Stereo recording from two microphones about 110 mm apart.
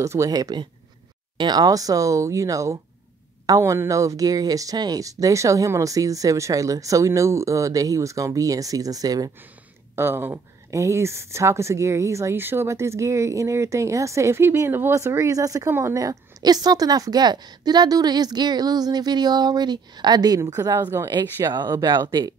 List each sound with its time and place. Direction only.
0.0 s speech: 30° right (ahead or behind)
9.9 s speech: 20° right (ahead or behind); by 22.3 s 40° right (ahead or behind)